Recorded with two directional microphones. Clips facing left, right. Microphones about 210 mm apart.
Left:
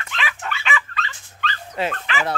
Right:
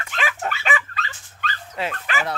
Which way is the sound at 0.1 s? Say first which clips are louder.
Right 3 dB; 45° right (ahead or behind).